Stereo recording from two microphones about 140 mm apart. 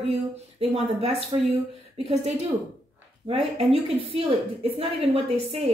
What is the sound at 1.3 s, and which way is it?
Speech, 35° right (ahead or behind).